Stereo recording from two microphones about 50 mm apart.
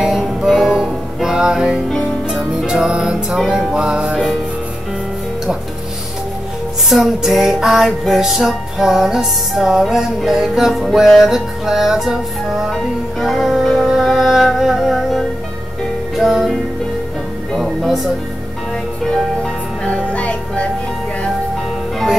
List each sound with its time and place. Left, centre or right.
0.0 s music: centre
6.9 s music: centre
19.0 s music: centre
20.1 s music: left